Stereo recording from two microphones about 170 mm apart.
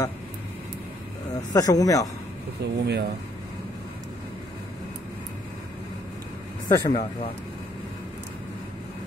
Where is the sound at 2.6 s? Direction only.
80° right.